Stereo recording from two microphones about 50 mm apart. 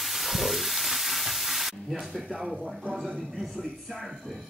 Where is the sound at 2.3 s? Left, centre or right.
Right.